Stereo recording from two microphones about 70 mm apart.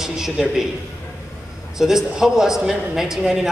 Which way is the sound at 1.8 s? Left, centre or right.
Centre.